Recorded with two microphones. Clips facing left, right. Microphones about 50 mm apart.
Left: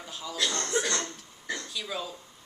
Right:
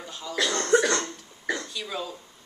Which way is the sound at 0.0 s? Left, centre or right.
Centre.